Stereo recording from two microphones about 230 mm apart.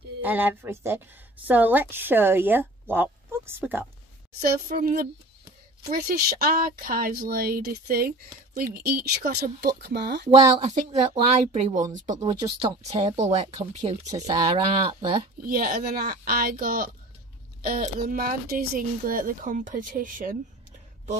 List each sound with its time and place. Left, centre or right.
0.2 s speech: centre
4.4 s speech: right
10.3 s speech: right
14.0 s speech: centre
15.4 s speech: right